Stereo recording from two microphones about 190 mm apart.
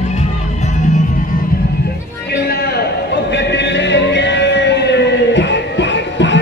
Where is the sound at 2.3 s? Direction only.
55° left (ahead or behind).